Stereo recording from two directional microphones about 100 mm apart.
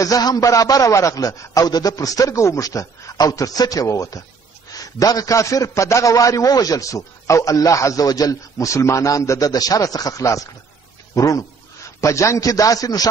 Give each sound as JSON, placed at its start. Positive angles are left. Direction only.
{"t": 0.0, "sound": "a man's voice", "side_deg": 40}